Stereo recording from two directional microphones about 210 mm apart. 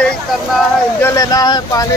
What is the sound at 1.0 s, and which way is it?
Speech, 15° left (ahead or behind).